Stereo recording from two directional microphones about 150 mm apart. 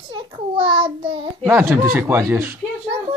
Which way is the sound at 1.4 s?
15° right (ahead or behind).